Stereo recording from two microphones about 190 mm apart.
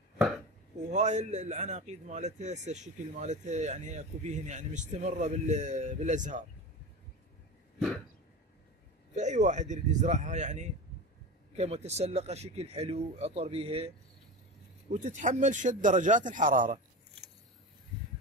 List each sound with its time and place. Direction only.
0.8 s a man's voice: 35° right (ahead or behind)
9.1 s a man's voice: 40° right (ahead or behind)
14.9 s a man's voice: 40° right (ahead or behind)